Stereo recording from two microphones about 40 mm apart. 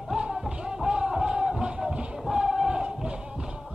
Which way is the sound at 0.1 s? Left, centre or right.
Right.